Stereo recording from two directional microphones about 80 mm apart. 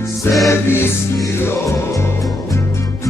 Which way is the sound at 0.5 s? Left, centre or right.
Left.